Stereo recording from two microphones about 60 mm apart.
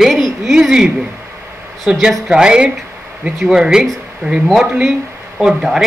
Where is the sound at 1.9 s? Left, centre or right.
Centre.